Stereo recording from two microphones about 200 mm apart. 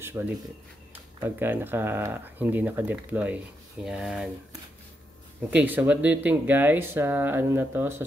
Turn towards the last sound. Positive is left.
turn(degrees=-10)  # may be behind; listen again after turning